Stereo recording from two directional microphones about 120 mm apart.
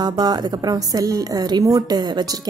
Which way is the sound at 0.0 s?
35° right (ahead or behind).